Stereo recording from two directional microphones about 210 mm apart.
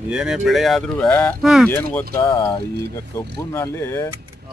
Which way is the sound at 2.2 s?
20° left (ahead or behind).